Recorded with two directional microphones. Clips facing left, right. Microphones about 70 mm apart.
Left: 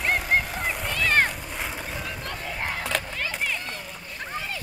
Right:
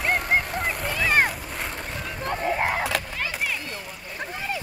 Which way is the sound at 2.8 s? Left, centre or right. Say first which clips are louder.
Right 1 dB; centre.